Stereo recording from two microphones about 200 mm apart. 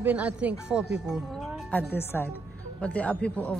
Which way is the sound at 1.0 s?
Centre (ahead or behind).